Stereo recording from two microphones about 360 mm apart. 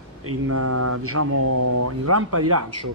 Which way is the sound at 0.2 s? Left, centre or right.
Right.